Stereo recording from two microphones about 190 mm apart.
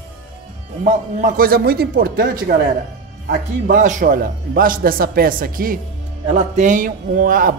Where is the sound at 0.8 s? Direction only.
45° right (ahead or behind).